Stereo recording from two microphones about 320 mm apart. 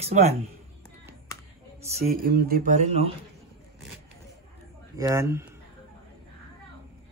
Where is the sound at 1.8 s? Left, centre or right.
Centre.